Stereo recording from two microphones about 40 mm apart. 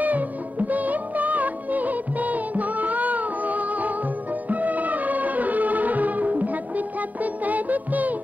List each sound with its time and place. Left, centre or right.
0.0 s music of bollywood: right